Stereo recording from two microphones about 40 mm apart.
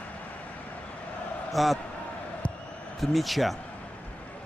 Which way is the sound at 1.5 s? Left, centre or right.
Centre.